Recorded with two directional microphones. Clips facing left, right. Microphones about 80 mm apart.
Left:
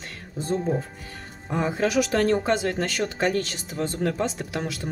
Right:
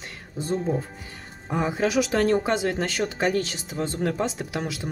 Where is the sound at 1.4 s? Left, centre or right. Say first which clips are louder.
Even; centre.